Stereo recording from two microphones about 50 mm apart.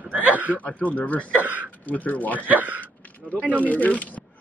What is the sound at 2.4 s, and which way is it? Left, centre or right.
Speech, right.